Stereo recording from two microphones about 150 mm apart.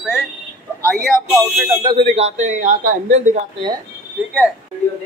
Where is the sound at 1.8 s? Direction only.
35° right (ahead or behind); by 3.4 s 55° right (ahead or behind).